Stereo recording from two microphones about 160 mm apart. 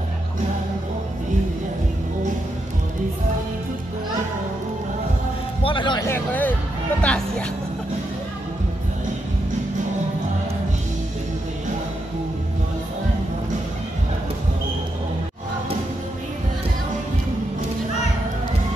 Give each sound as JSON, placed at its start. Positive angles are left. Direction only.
{"t": 5.6, "sound": "a sound", "side_deg": 30}
{"t": 6.0, "sound": "speech", "side_deg": 10}
{"t": 7.0, "sound": "music", "side_deg": 5}